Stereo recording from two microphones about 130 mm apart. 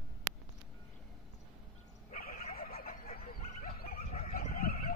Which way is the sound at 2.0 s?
90° left.